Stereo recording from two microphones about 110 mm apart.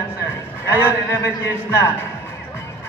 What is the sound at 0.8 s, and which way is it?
Speech, 25° left (ahead or behind).